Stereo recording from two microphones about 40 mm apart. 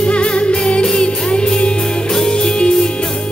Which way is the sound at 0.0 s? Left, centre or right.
Left.